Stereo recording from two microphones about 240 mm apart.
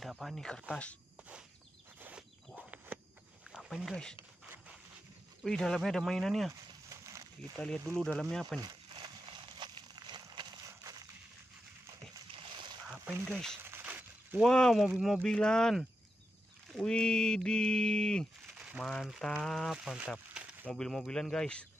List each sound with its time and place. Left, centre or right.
0.0 s cricket: centre
2.0 s a sound: centre
3.5 s speech: centre
5.4 s speech: centre
6.9 s a sound: centre
7.5 s speech: centre
8.5 s a sound: centre
12.8 s speech: centre
13.6 s speech: centre